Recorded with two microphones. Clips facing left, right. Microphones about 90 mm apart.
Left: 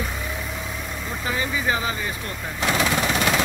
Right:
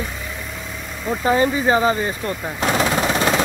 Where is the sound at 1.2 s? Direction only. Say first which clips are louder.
Right 8 dB; 35° right (ahead or behind).